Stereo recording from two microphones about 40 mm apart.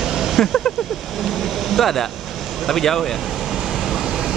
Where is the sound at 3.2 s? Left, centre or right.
Centre.